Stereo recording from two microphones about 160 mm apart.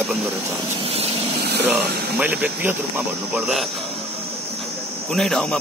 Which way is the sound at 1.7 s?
10° right (ahead or behind).